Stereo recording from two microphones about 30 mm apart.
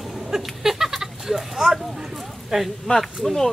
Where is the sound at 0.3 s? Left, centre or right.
Centre.